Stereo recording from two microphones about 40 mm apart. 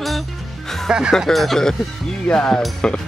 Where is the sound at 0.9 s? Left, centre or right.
Centre.